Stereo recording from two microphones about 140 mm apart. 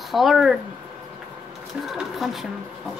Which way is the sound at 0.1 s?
Centre (ahead or behind).